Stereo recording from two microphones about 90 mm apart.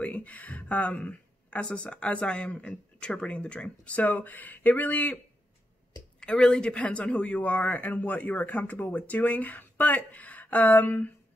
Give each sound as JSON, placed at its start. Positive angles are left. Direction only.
{"t": 0.0, "sound": "speech", "side_deg": 15}